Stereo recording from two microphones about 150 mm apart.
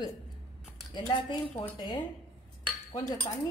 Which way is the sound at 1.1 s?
30° left (ahead or behind).